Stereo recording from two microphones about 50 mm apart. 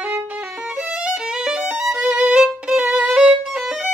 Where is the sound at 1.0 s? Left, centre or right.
Centre.